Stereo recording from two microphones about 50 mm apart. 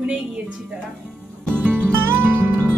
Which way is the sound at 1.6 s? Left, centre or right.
Right.